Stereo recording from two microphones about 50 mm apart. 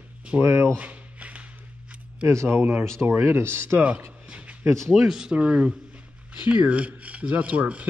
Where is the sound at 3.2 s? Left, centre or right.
Right.